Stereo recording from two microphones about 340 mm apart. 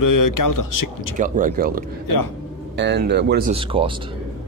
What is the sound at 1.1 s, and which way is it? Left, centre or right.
Speech, right.